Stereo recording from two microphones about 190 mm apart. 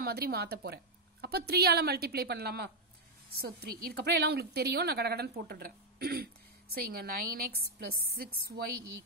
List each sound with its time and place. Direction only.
0.0 s a woman's voice: 55° right (ahead or behind)